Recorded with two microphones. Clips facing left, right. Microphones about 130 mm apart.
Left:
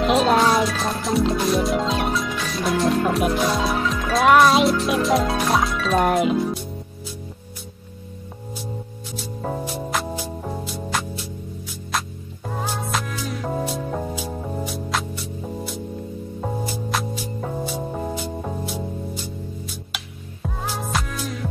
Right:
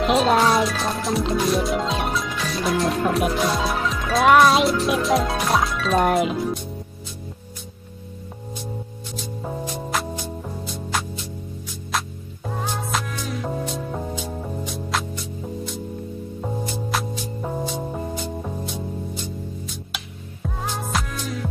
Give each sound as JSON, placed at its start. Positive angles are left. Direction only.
{"t": 0.0, "sound": "speech", "side_deg": 0}
{"t": 9.1, "sound": "music", "side_deg": 5}
{"t": 12.6, "sound": "music", "side_deg": 0}